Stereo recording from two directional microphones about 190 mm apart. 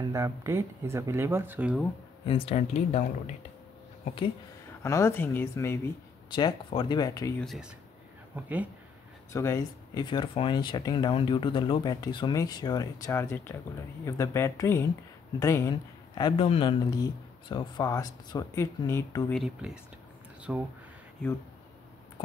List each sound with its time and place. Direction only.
0.0 s speech: 15° right (ahead or behind)
2.2 s speech: 30° left (ahead or behind)
4.8 s speech: 15° left (ahead or behind)
6.3 s speech: 25° left (ahead or behind)
7.3 s speech: centre (ahead or behind)
9.3 s speech: 15° left (ahead or behind)
16.2 s speech: 25° left (ahead or behind)
19.3 s speech: centre (ahead or behind)